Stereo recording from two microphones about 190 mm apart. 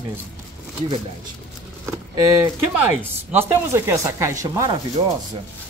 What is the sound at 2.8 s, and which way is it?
Speech, 10° right (ahead or behind).